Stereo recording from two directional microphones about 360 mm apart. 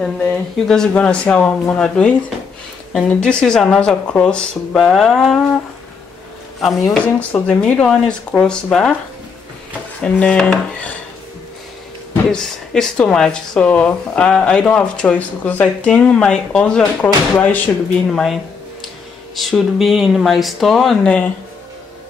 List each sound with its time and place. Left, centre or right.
0.0 s speech: centre
6.6 s speech: centre
10.0 s speech: centre
12.1 s speech: centre